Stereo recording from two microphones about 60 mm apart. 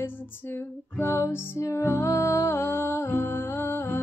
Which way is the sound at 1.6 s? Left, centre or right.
Left.